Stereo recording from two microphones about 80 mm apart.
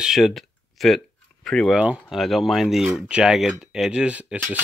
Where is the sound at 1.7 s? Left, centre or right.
Centre.